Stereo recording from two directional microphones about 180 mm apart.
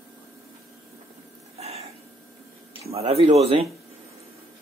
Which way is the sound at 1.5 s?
35° right (ahead or behind).